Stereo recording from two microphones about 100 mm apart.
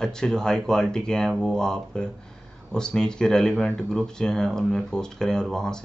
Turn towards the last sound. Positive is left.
turn(degrees=5)  # may be behind; listen again after turning